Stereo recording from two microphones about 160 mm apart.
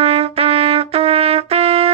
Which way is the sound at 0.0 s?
40° right (ahead or behind).